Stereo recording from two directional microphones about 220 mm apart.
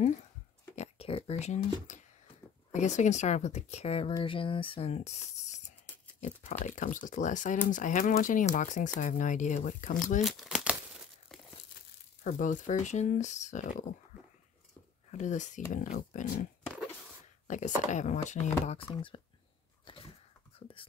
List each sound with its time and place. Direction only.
0.7 s speech: 25° left (ahead or behind)
10.2 s crumpling: centre (ahead or behind)
12.2 s speech: 35° left (ahead or behind)
15.0 s speech: 30° left (ahead or behind)
17.5 s speech: 35° left (ahead or behind)
19.8 s a sound: 25° left (ahead or behind)